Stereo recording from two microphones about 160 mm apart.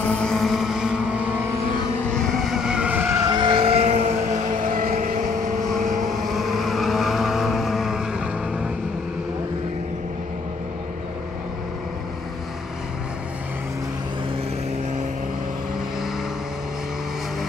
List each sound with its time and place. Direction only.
0.2 s vehicle: 5° left (ahead or behind)
2.1 s vehicle: centre (ahead or behind)
3.3 s vehicle: 30° right (ahead or behind); by 5.1 s 60° right (ahead or behind)
5.9 s vehicle: centre (ahead or behind)